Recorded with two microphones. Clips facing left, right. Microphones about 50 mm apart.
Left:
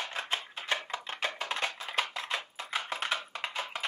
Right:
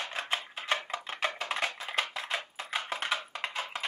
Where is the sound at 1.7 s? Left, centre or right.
Centre.